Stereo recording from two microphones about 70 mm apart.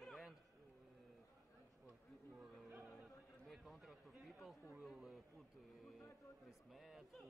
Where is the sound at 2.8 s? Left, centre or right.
Centre.